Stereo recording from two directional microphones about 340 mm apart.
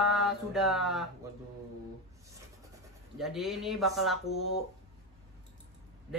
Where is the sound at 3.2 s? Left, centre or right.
Centre.